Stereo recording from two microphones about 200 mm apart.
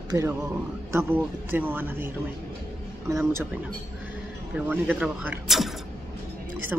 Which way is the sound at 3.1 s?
15° right (ahead or behind).